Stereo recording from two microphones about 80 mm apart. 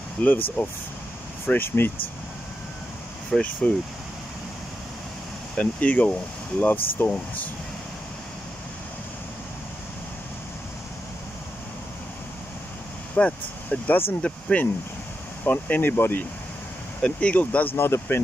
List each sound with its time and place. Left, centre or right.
0.2 s speech: left
3.3 s speech: centre
5.6 s speech: centre
13.1 s speech: centre